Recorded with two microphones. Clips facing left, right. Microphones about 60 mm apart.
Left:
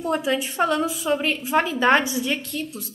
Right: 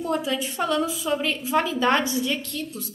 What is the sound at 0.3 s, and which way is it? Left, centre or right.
A woman's voice, left.